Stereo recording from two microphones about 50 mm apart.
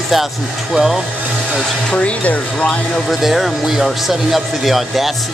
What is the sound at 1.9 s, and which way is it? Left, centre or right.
Speech, left.